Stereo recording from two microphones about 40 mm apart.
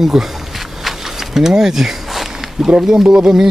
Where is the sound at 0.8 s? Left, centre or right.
Centre.